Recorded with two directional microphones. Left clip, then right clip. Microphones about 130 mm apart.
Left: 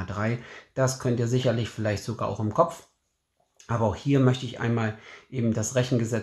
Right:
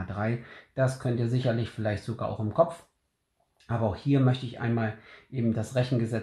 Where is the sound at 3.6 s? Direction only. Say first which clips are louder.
Left 3 dB; 40° left (ahead or behind).